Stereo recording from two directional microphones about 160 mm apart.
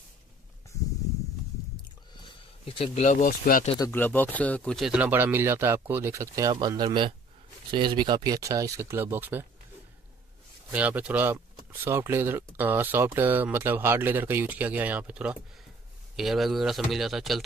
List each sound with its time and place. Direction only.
2.2 s a sound: 35° left (ahead or behind)
3.3 s speech: 65° left (ahead or behind)
3.8 s speech: 10° left (ahead or behind); by 9.5 s 15° right (ahead or behind)
10.7 s speech: 10° right (ahead or behind)